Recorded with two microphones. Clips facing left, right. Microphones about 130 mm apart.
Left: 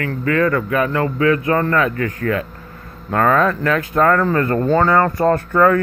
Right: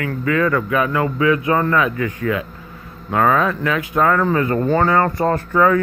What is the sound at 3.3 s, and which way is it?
Speech, 50° left (ahead or behind).